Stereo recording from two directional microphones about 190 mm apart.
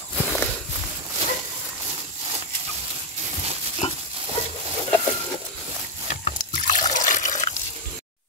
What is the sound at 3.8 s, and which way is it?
Pig, 35° left (ahead or behind).